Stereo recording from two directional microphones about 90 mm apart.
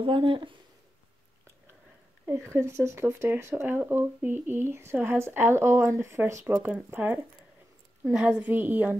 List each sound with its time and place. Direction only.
0.0 s speech: 75° right (ahead or behind)
2.2 s speech: 30° right (ahead or behind)
6.6 s speech: 20° right (ahead or behind)